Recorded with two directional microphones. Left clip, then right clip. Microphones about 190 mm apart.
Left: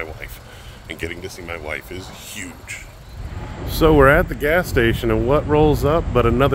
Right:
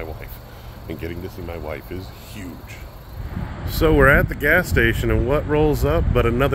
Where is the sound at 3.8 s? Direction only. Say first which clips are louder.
Left 2 dB; 10° left (ahead or behind).